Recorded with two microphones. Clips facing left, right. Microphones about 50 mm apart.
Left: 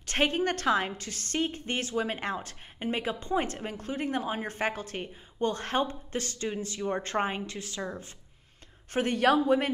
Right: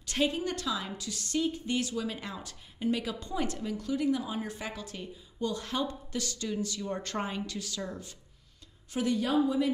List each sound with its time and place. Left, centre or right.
0.0 s a woman's voice: left
8.9 s speech: left
9.2 s speech: left